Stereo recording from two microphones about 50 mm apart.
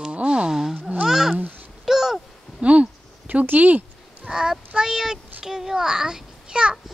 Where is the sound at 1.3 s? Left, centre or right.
Right.